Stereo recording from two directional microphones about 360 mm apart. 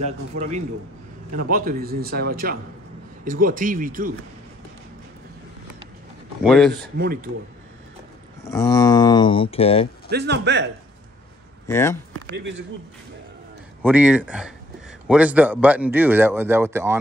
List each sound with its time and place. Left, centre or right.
0.0 s a man's voice: centre
6.4 s a man's voice: centre
8.5 s speech: centre
10.0 s a man's voice: right
11.6 s speech: centre
12.1 s speech: right
13.8 s a man's voice: centre